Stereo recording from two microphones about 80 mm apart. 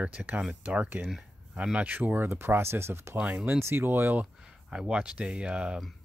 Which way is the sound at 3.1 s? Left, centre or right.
Centre.